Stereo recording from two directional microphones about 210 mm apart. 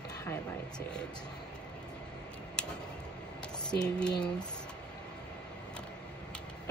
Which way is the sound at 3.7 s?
5° left (ahead or behind).